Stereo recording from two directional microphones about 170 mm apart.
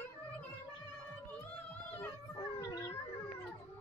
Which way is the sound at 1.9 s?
20° left (ahead or behind).